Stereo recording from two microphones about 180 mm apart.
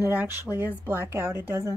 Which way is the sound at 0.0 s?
10° right (ahead or behind).